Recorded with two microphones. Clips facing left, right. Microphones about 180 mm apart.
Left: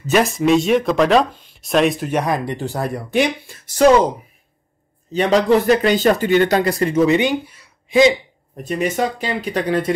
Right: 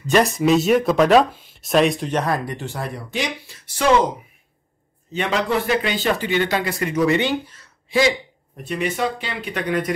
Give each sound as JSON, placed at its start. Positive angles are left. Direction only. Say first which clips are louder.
{"t": 0.0, "sound": "speech", "louder": "left 1 dB", "side_deg": 0}
{"t": 2.4, "sound": "speech", "louder": "left 5 dB", "side_deg": 35}
{"t": 5.1, "sound": "speech", "louder": "left 7 dB", "side_deg": 40}
{"t": 8.6, "sound": "speech", "louder": "left 3 dB", "side_deg": 45}